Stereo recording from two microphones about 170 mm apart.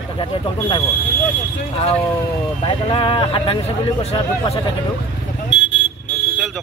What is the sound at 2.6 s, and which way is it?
Speech, 30° left (ahead or behind).